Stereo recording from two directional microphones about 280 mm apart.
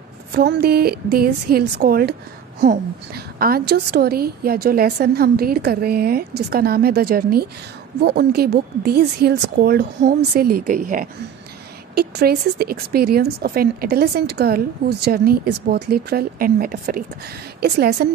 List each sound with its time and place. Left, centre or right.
0.3 s speech: right
3.3 s speech: right